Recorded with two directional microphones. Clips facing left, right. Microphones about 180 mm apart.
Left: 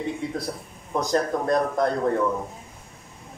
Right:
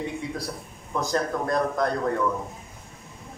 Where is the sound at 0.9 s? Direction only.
20° left (ahead or behind).